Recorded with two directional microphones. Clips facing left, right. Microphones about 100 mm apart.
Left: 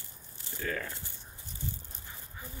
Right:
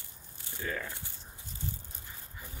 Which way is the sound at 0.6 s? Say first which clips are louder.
Left 1 dB; 5° right (ahead or behind).